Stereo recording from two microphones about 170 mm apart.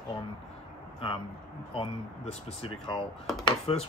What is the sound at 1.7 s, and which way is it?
Speech, 35° left (ahead or behind).